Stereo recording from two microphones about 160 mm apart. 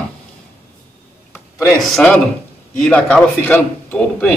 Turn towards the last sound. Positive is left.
turn(degrees=10)  # may be behind; listen again after turning